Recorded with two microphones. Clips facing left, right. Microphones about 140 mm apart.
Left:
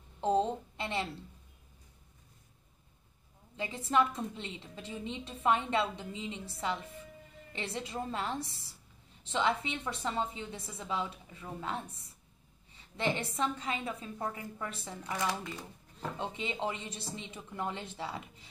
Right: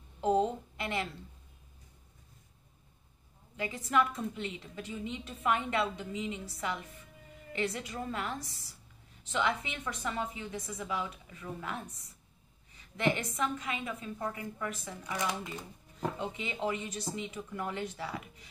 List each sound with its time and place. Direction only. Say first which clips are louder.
0.7 s a sound: even; 25° left (ahead or behind)
3.5 s a woman's voice: even; 25° left (ahead or behind)
16.2 s a woman's voice: even; 25° left (ahead or behind)